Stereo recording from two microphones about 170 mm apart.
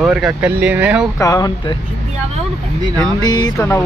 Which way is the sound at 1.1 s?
20° left (ahead or behind).